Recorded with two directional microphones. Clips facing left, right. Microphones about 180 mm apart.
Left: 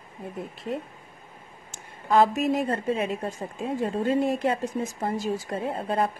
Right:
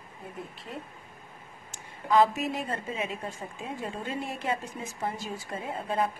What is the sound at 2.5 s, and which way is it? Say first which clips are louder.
Speech: left 8 dB; 40° left (ahead or behind).